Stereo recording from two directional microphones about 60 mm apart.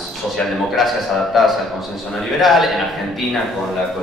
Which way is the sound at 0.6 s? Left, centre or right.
Centre.